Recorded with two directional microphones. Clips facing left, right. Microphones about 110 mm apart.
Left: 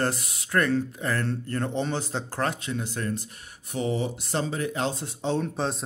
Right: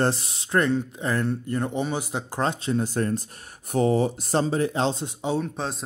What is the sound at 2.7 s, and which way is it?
Speech, 40° right (ahead or behind).